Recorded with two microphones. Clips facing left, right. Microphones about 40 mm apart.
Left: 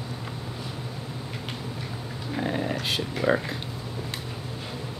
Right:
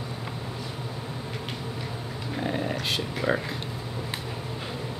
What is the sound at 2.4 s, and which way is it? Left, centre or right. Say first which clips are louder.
Dog: left 1 dB; centre.